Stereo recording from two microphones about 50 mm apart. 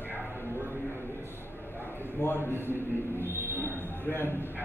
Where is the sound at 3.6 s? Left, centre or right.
Left.